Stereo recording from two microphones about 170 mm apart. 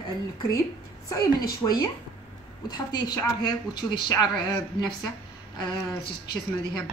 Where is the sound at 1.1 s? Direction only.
20° left (ahead or behind).